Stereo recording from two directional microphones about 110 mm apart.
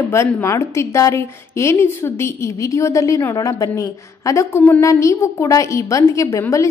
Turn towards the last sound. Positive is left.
turn(degrees=30)  # may be behind; listen again after turning